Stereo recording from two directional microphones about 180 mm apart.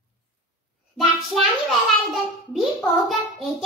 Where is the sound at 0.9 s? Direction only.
Centre (ahead or behind).